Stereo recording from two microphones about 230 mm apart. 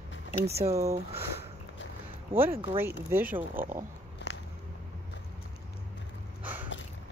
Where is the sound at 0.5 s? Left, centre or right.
Right.